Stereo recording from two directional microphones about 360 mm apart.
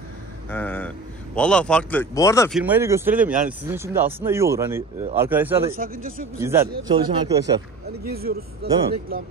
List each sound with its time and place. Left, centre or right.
0.5 s speech: centre
2.6 s speech: centre
5.7 s speech: right
6.3 s speech: centre
8.1 s speech: right